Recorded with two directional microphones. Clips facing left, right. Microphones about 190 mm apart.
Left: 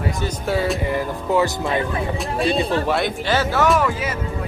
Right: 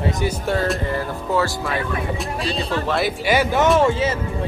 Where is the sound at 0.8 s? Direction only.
15° left (ahead or behind).